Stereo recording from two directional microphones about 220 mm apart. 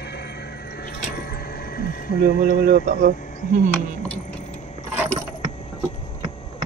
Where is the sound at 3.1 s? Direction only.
35° left (ahead or behind).